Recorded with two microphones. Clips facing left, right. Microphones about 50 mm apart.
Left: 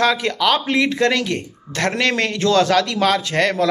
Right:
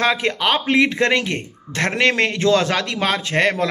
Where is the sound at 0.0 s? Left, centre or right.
Right.